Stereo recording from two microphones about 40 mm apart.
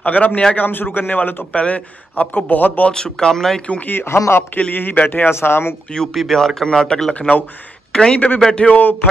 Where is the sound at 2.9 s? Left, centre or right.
Centre.